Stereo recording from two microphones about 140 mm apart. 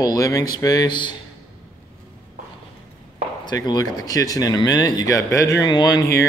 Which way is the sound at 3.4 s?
30° left (ahead or behind).